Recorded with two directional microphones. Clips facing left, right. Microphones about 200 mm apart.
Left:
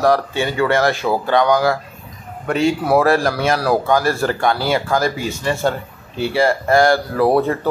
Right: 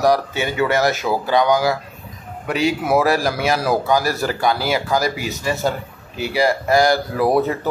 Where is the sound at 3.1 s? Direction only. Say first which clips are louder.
Left 2 dB; 10° right (ahead or behind).